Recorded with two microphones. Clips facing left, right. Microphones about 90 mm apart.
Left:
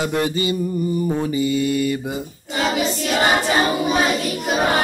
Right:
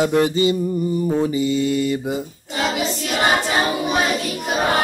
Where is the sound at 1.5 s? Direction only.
55° left (ahead or behind).